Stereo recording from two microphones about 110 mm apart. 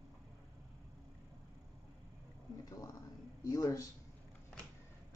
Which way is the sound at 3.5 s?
30° left (ahead or behind).